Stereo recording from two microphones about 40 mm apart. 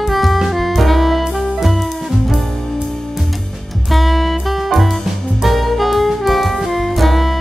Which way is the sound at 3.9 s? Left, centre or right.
Centre.